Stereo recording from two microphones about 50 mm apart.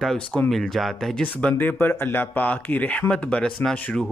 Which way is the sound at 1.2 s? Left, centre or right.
Left.